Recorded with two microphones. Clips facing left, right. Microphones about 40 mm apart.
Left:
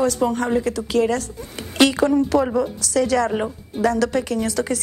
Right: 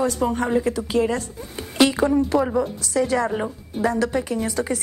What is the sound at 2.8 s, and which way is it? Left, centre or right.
A woman's voice, centre.